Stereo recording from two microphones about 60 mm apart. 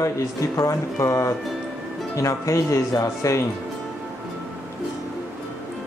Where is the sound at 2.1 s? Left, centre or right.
Left.